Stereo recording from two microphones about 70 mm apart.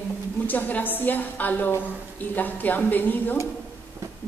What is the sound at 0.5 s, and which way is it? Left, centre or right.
A woman's voice, left.